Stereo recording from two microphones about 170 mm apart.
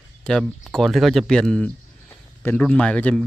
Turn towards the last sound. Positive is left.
turn(degrees=5)  # may be behind; listen again after turning